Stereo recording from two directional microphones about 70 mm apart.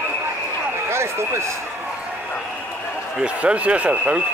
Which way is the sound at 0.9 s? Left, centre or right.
Right.